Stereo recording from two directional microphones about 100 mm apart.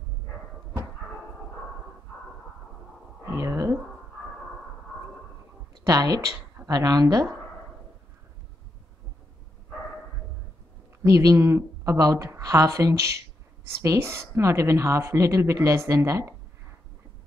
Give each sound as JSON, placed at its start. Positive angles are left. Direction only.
{"t": 3.3, "sound": "a sound", "side_deg": -30}
{"t": 5.9, "sound": "speech", "side_deg": -35}
{"t": 11.1, "sound": "a woman's voice", "side_deg": -30}